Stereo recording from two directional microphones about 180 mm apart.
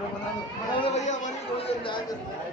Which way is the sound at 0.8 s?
40° left (ahead or behind).